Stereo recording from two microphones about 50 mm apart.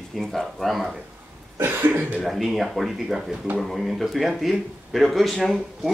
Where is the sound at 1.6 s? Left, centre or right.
Right.